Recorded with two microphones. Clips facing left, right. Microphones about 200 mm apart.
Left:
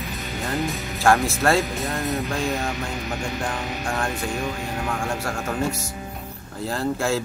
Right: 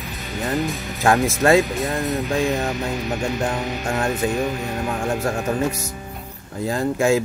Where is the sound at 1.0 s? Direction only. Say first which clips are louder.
Right 2 dB; 15° right (ahead or behind).